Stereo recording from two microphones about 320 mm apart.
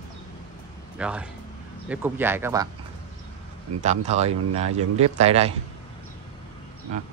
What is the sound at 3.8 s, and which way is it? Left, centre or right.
Speech, right.